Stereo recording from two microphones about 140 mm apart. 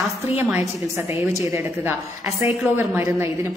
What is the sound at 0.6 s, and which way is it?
Speech, 20° left (ahead or behind).